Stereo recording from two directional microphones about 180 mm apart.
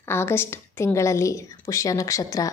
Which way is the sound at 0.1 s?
10° left (ahead or behind).